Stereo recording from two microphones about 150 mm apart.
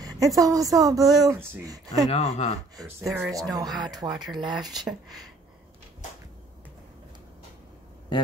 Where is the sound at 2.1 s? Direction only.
40° left (ahead or behind).